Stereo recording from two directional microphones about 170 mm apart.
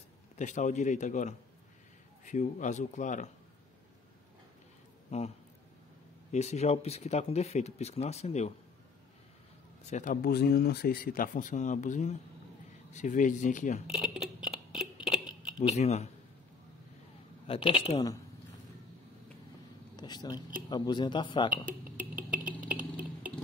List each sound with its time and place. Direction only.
0.4 s a man's voice: 45° left (ahead or behind)
5.1 s speech: 40° left (ahead or behind)
6.3 s speech: 40° left (ahead or behind)
9.8 s a man's voice: 45° left (ahead or behind)
10.2 s a man's voice: 65° left (ahead or behind); by 13.7 s 45° left (ahead or behind)
13.8 s a sound: 5° right (ahead or behind)
15.7 s speech: 40° left (ahead or behind)
17.5 s speech: 30° left (ahead or behind)
20.0 s speech: 25° left (ahead or behind)
22.1 s a sound: 10° right (ahead or behind)